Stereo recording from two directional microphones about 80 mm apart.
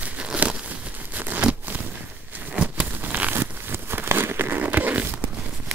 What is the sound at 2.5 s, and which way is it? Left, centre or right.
Crumpling, centre.